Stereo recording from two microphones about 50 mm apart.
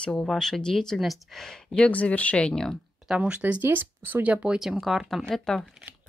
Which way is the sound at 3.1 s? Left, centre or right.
Right.